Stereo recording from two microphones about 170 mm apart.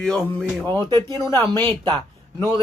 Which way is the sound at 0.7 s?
25° right (ahead or behind).